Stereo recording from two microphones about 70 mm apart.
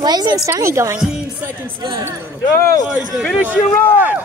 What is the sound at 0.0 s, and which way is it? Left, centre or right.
Speech, right.